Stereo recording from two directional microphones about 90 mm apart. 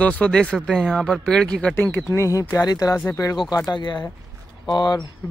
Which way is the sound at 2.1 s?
35° left (ahead or behind).